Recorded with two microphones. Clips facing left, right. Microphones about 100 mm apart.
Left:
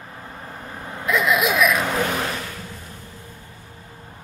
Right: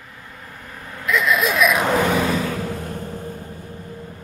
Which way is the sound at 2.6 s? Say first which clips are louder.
Right 11 dB; 70° right (ahead or behind).